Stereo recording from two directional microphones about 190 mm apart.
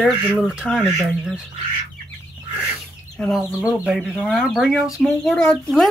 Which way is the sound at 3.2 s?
Centre (ahead or behind).